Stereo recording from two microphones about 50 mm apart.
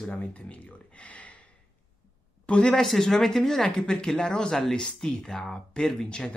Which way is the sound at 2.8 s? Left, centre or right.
Centre.